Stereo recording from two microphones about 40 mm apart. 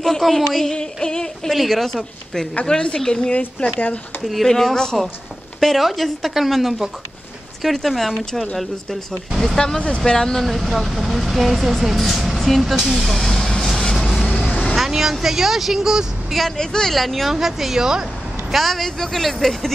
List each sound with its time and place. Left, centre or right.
0.0 s a sound: centre
1.5 s speech: centre
2.6 s speech: left
4.5 s a sound: centre
5.6 s speech: centre
9.4 s a sound: centre
9.8 s speech: left; by 13.3 s centre
13.7 s vehicle: centre
13.9 s vehicle: centre
14.9 s speech: centre
16.3 s a sound: centre
16.9 s speech: centre
18.5 s speech: centre